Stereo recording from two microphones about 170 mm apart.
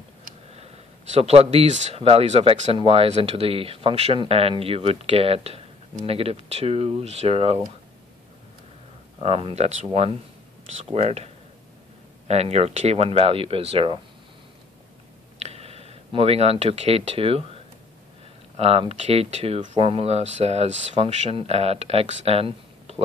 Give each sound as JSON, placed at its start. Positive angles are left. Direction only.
{"t": 1.1, "sound": "speech", "side_deg": -40}
{"t": 9.2, "sound": "speech", "side_deg": -35}
{"t": 10.9, "sound": "speech", "side_deg": -40}
{"t": 12.3, "sound": "speech", "side_deg": -40}
{"t": 15.3, "sound": "speech", "side_deg": -40}
{"t": 18.6, "sound": "speech", "side_deg": -35}